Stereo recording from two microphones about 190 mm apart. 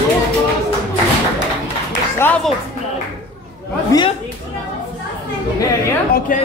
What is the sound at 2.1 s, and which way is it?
Music, 10° left (ahead or behind).